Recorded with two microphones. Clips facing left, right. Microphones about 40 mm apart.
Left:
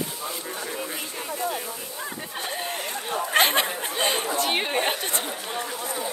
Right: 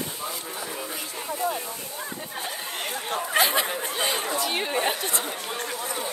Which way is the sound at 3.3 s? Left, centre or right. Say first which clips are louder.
Left 2 dB; left.